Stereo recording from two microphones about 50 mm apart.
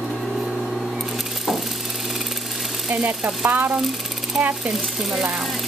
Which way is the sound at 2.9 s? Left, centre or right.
Centre.